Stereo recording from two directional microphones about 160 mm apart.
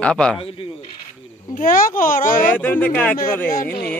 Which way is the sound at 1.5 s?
60° left (ahead or behind).